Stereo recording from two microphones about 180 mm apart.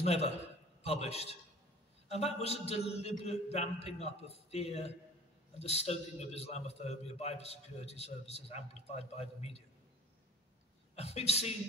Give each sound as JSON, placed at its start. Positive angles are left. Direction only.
{"t": 0.0, "sound": "a man's voice", "side_deg": 35}
{"t": 11.0, "sound": "a man's voice", "side_deg": 35}